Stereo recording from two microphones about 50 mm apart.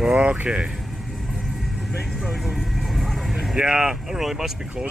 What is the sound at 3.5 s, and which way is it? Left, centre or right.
Speech, centre.